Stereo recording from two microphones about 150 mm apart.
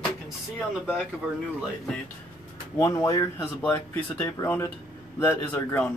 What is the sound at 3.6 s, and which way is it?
Speech, 10° left (ahead or behind).